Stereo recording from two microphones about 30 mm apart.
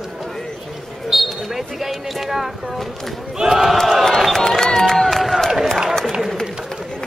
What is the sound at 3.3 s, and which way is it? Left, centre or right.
Battle cry, centre.